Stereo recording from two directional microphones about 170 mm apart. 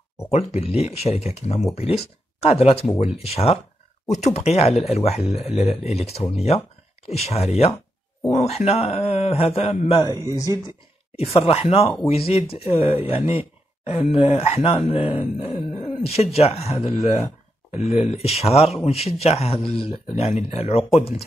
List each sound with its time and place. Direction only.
0.3 s speech: 40° left (ahead or behind)
10.0 s speech: 20° right (ahead or behind)
11.4 s speech: 35° left (ahead or behind)